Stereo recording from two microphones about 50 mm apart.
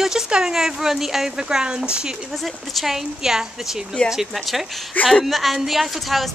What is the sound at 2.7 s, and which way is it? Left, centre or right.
A woman's voice, centre.